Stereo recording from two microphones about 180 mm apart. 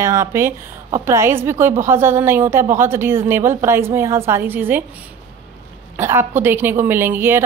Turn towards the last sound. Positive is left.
turn(degrees=-10)  # may be behind; listen again after turning